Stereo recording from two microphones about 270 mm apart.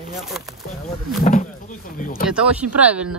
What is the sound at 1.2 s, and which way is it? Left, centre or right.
Speech, left.